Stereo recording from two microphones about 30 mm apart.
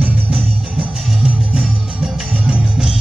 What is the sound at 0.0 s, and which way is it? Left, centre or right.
Music, right.